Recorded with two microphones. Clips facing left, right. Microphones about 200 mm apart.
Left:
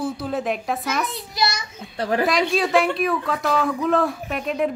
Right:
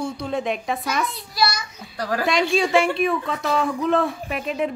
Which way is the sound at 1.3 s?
20° left (ahead or behind).